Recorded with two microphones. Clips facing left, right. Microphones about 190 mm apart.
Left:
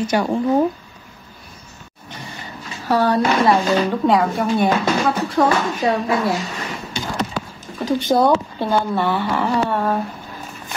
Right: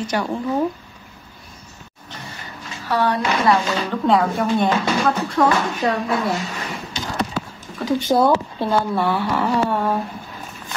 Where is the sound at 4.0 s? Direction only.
5° left (ahead or behind).